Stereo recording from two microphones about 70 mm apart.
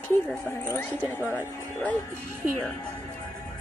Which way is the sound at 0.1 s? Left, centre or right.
Left.